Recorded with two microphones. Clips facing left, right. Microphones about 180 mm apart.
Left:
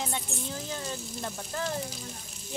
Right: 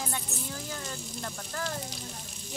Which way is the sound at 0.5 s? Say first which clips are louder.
Left 4 dB; 20° left (ahead or behind).